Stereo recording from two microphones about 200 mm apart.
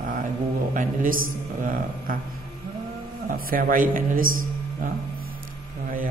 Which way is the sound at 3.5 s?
45° right (ahead or behind).